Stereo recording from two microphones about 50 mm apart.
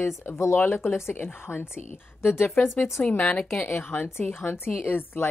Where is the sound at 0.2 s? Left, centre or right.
Left.